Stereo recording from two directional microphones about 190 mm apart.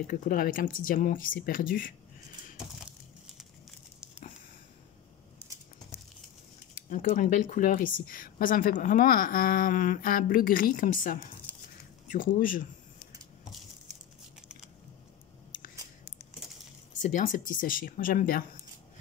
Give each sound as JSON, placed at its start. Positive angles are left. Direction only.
{"t": 0.0, "sound": "speech", "side_deg": 45}
{"t": 6.9, "sound": "speech", "side_deg": 45}
{"t": 17.0, "sound": "speech", "side_deg": 45}